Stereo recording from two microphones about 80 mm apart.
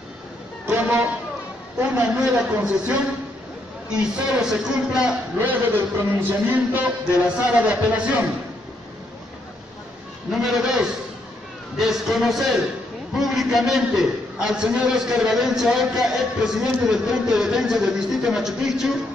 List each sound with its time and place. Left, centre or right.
0.7 s music: right
1.8 s a man's voice: centre
5.4 s a man's voice: right
10.3 s a man's voice: centre